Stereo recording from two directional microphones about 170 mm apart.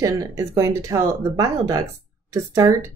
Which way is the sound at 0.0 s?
20° right (ahead or behind).